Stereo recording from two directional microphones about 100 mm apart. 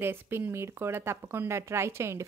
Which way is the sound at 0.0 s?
20° right (ahead or behind).